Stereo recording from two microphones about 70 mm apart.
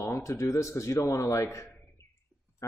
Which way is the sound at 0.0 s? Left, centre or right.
Left.